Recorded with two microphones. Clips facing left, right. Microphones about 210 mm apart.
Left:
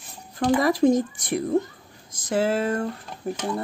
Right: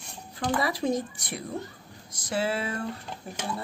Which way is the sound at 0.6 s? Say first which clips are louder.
Left 8 dB; 45° left (ahead or behind).